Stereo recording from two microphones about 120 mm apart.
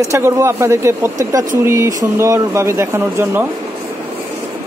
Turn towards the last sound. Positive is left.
turn(degrees=-20)  # may be behind; listen again after turning